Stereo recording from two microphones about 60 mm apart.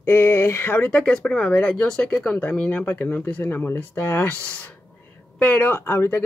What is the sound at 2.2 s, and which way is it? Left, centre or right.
Speech, left.